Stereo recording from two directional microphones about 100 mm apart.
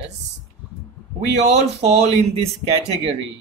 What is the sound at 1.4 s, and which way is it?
Speech, 90° right.